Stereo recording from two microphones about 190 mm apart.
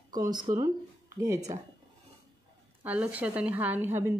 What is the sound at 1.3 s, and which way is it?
Speech, 35° right (ahead or behind).